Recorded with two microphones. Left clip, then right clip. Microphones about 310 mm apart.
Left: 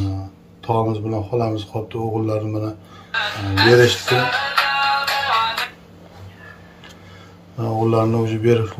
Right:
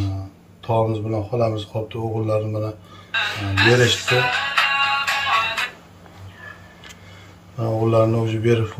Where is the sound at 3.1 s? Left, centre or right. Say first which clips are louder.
Even; centre.